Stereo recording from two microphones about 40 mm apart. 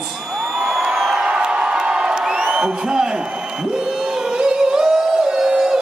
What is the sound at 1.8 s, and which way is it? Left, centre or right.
Crowd, right.